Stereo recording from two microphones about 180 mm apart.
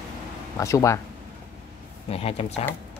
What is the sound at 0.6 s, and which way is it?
Speech, 15° left (ahead or behind).